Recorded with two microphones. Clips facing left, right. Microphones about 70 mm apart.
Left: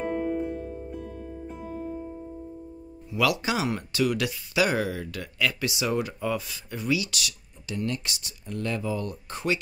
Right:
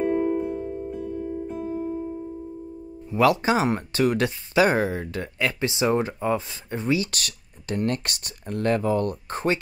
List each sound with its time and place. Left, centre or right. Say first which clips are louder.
0.1 s music: right 5 dB; centre
3.1 s speech: right 6 dB; right